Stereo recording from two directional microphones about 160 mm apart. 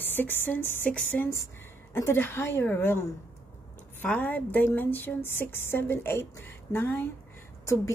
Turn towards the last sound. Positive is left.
turn(degrees=20)  # may be behind; listen again after turning